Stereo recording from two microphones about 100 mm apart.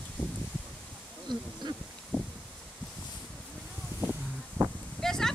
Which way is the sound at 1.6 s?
50° right (ahead or behind).